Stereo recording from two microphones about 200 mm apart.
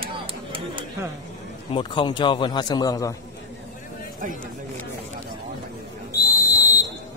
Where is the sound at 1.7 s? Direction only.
25° left (ahead or behind).